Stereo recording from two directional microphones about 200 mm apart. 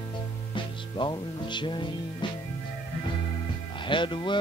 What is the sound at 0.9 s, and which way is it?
Music, 20° left (ahead or behind).